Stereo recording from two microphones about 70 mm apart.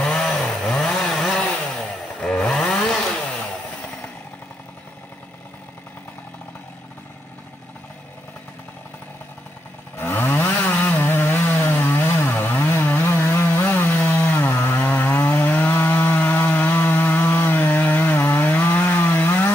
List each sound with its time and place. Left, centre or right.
0.0 s chainsaw: centre
9.9 s chainsaw: left
15.2 s chainsaw: left
15.6 s wood: left
16.2 s chainsaw: left
18.1 s chainsaw: left